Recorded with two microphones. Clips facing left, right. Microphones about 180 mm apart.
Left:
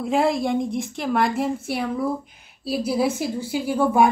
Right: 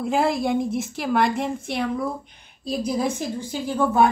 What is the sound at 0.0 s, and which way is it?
A woman's voice, centre (ahead or behind).